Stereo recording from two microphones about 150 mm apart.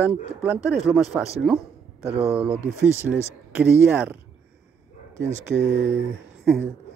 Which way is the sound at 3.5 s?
10° right (ahead or behind).